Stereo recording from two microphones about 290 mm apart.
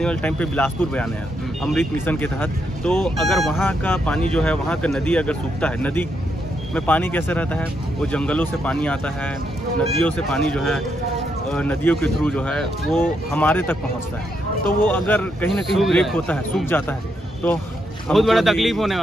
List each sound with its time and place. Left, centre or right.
0.0 s speech: centre
14.9 s speech: centre
18.0 s speech: centre